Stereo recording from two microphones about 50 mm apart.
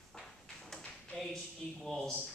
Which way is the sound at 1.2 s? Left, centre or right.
Centre.